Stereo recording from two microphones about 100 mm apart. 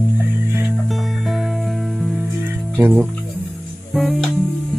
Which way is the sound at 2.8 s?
15° right (ahead or behind).